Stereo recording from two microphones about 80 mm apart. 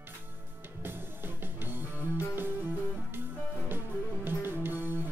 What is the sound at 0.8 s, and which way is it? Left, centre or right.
Music, right.